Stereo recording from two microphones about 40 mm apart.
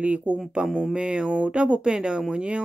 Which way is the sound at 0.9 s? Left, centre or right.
Right.